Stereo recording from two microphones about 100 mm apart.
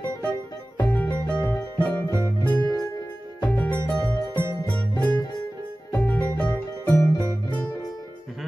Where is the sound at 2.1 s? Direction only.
30° right (ahead or behind).